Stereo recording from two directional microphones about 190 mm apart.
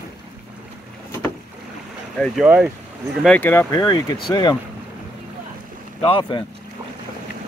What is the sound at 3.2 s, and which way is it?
Speech, 5° left (ahead or behind).